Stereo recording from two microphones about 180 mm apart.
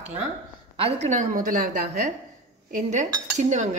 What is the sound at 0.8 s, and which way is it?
A woman's voice, 35° right (ahead or behind).